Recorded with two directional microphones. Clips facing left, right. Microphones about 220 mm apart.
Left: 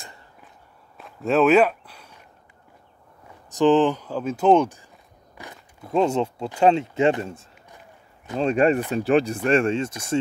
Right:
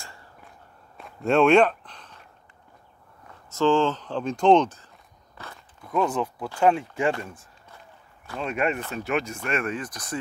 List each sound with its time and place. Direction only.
0.9 s walk: centre (ahead or behind)
3.3 s speech: 15° left (ahead or behind)